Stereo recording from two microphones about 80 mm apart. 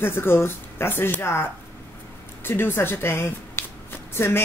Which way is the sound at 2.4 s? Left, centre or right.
Left.